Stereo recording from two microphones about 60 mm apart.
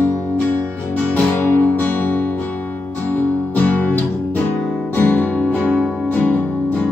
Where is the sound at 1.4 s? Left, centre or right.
Left.